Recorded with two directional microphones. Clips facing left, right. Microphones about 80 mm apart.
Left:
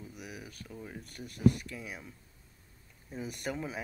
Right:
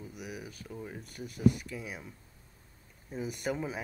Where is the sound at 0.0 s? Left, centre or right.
Centre.